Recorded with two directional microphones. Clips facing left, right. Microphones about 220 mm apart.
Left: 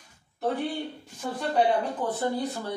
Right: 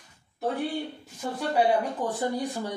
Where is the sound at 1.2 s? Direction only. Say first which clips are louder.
Even; 10° right (ahead or behind).